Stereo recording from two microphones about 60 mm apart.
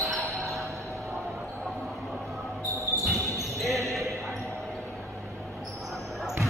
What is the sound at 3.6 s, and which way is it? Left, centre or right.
Basketball bounce, centre.